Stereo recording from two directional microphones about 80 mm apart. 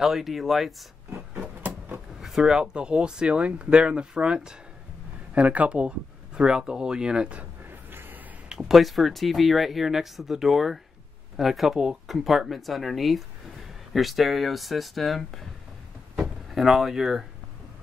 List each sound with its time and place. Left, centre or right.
0.0 s speech: centre
1.3 s a sound: centre
2.1 s speech: centre
7.9 s a sound: right
8.5 s speech: centre
16.2 s drawer open or close: centre